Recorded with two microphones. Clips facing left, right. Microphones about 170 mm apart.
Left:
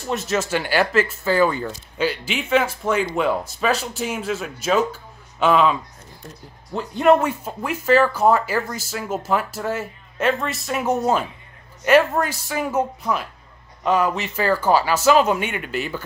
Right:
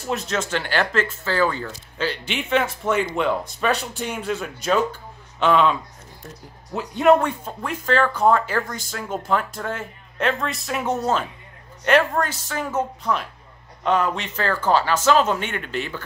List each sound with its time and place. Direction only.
0.0 s speech: centre (ahead or behind)
2.2 s speech: 5° left (ahead or behind)